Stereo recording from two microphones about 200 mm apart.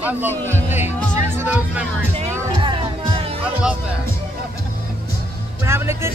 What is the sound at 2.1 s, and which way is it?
Music, 25° right (ahead or behind).